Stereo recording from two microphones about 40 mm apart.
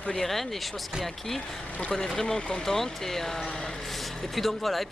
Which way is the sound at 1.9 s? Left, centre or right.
Centre.